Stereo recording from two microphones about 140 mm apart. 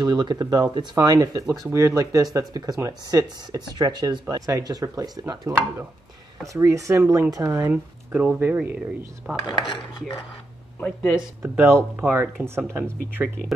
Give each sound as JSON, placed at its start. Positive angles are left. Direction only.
{"t": 0.0, "sound": "speech", "side_deg": -30}
{"t": 7.7, "sound": "speech", "side_deg": -10}
{"t": 9.4, "sound": "cutlery", "side_deg": 35}
{"t": 10.8, "sound": "speech", "side_deg": 10}
{"t": 11.4, "sound": "speech", "side_deg": -15}